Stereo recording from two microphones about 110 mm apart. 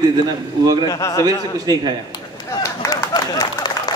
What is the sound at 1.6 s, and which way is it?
Speech, 40° right (ahead or behind).